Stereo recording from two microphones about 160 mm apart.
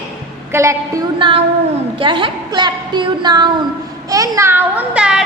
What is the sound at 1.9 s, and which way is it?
A woman's voice, 30° right (ahead or behind).